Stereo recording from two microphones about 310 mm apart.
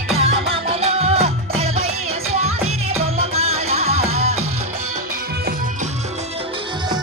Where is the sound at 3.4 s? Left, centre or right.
Centre.